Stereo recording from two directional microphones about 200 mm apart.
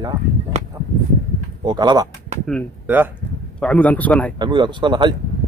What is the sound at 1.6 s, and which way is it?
Speech, 20° right (ahead or behind).